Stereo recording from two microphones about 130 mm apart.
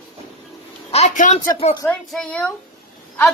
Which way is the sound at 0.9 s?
60° left (ahead or behind).